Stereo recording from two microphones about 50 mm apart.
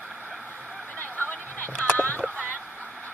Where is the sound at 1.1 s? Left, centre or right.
Left.